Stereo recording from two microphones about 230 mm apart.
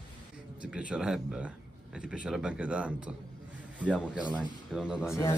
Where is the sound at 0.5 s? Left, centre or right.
Centre.